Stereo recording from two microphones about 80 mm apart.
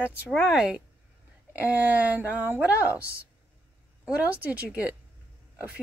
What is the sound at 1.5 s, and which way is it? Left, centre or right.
Speech, centre.